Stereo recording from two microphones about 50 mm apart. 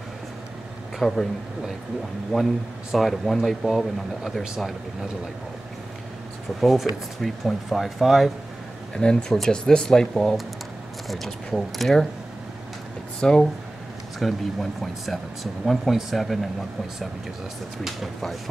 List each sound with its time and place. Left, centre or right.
1.0 s speech: centre
2.3 s speech: centre
6.6 s speech: centre
8.9 s speech: centre
13.2 s speech: centre
17.8 s speech: centre